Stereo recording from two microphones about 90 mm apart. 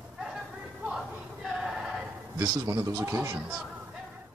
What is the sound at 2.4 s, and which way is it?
Speech, 40° right (ahead or behind).